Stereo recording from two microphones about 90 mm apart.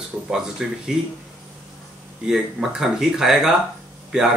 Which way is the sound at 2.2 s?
5° right (ahead or behind).